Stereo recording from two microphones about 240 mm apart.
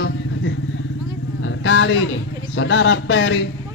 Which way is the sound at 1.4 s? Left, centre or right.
Left.